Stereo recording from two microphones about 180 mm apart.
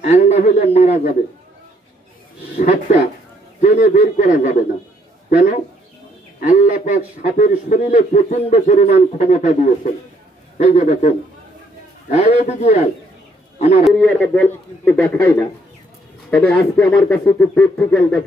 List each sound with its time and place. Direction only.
0.0 s a sound: 40° left (ahead or behind)
0.7 s a man's voice: 40° left (ahead or behind)
2.6 s a man's voice: 40° left (ahead or behind)
6.4 s a man's voice: 45° left (ahead or behind)
13.8 s a man's voice: 5° left (ahead or behind)